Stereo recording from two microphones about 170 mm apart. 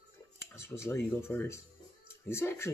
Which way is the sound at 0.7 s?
15° left (ahead or behind).